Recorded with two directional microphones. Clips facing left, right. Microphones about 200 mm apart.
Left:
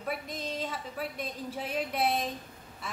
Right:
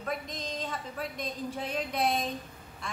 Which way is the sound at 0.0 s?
5° left (ahead or behind).